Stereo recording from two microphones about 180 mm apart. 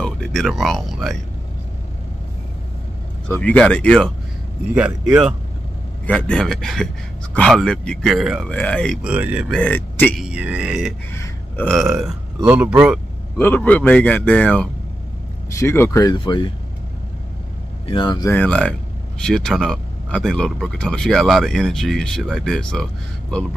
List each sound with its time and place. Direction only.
0.0 s speech: 5° left (ahead or behind)
3.3 s speech: 10° left (ahead or behind)
4.7 s speech: 5° right (ahead or behind)
6.0 s speech: 5° left (ahead or behind)
9.0 s speech: 10° right (ahead or behind)
9.5 s speech: 10° left (ahead or behind)
10.1 s speech: 5° right (ahead or behind)
11.1 s a sound: 10° left (ahead or behind)
11.7 s speech: centre (ahead or behind)
13.4 s speech: 10° left (ahead or behind)
17.8 s speech: 25° left (ahead or behind)
18.3 s speech: 10° left (ahead or behind)